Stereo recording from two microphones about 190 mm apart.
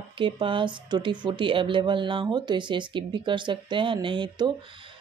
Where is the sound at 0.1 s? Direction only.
25° right (ahead or behind).